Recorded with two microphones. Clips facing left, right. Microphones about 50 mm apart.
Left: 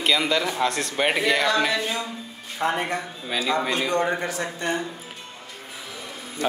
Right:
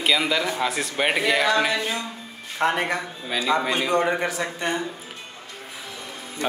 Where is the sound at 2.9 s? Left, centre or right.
Centre.